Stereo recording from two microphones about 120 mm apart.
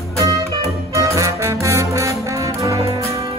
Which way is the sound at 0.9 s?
25° right (ahead or behind).